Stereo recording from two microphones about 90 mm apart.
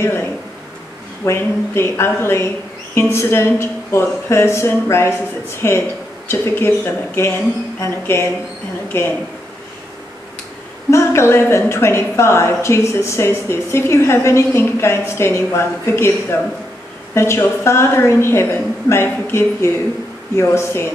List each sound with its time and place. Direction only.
0.0 s a sound: 25° left (ahead or behind)
1.2 s a woman's voice: 30° left (ahead or behind)
7.8 s a woman's voice: 30° left (ahead or behind)
10.9 s a woman's voice: 30° left (ahead or behind)